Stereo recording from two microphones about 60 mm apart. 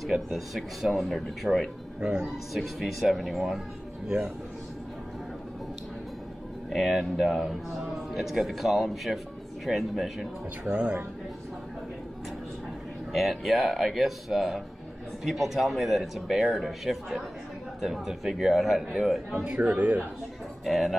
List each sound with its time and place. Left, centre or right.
0.1 s speech: centre
2.0 s speech: centre
2.2 s speech: centre
6.7 s speech: centre
10.7 s speech: centre
13.1 s speech: centre
19.4 s speech: right
20.6 s speech: centre